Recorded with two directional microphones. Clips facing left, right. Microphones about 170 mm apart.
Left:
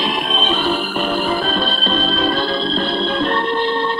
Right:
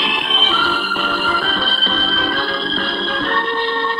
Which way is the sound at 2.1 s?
20° left (ahead or behind).